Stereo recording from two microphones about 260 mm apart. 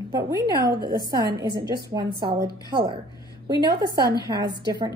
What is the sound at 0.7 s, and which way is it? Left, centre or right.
Speech, right.